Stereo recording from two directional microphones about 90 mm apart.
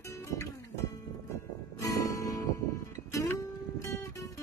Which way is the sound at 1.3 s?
35° left (ahead or behind).